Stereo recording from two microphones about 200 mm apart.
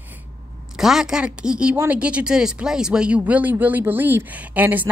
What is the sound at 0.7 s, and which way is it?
A woman's voice, centre (ahead or behind).